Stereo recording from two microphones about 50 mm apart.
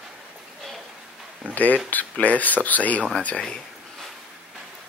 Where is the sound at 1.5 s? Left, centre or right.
Left.